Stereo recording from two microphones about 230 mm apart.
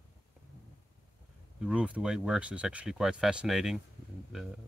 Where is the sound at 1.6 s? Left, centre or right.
Centre.